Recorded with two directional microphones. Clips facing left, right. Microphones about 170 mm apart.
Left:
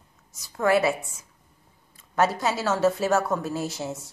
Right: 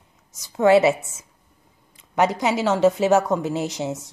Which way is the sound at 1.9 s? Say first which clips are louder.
Right 3 dB; 15° right (ahead or behind).